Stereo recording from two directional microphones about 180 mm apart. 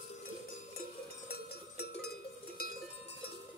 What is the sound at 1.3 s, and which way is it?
Cowbell, 65° left (ahead or behind).